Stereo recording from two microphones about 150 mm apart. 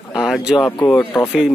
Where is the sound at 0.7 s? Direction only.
15° left (ahead or behind).